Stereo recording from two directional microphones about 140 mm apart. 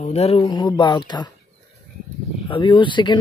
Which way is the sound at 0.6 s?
30° left (ahead or behind).